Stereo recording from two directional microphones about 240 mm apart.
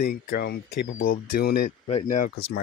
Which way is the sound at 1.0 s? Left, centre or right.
Left.